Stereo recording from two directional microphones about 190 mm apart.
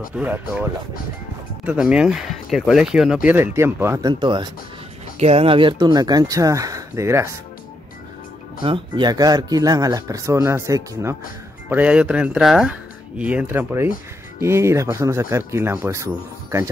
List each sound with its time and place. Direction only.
0.1 s speech: 10° right (ahead or behind)
4.1 s speech: 25° right (ahead or behind)
8.6 s speech: 25° right (ahead or behind)